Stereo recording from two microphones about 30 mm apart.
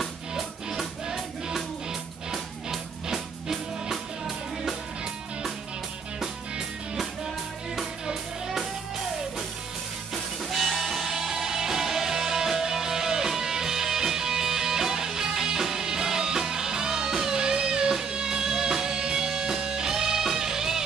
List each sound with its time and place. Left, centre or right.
1.1 s music: centre
7.7 s music: centre
10.5 s music: centre